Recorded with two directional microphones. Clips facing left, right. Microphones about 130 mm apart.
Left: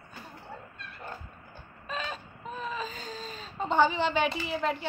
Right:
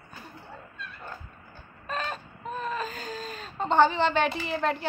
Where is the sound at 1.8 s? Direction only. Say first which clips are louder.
Right 3 dB; centre (ahead or behind).